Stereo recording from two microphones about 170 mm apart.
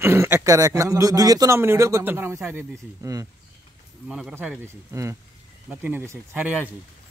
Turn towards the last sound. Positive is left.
turn(degrees=-10)  # may be behind; listen again after turning